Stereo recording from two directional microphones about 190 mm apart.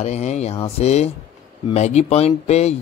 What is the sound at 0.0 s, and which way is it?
Speech, 35° left (ahead or behind).